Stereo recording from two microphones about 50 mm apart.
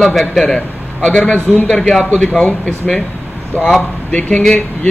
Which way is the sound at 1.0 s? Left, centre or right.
Left.